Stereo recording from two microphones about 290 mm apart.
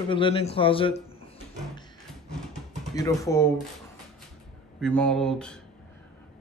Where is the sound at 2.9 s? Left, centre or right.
Centre.